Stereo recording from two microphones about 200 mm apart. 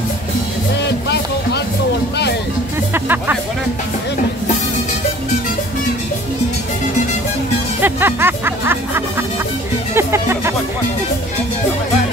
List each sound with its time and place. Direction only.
0.8 s music: 55° left (ahead or behind)
2.9 s music: 10° right (ahead or behind)
7.8 s music: 10° right (ahead or behind)